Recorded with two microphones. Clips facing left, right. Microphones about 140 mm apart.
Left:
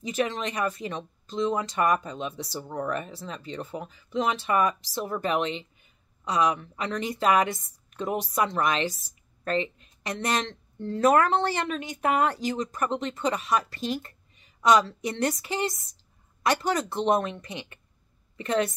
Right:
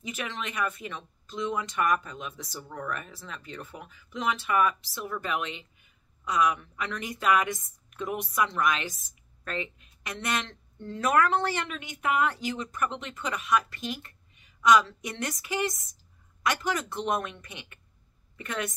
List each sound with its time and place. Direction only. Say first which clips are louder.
0.0 s a woman's voice: left 8 dB; 35° left (ahead or behind)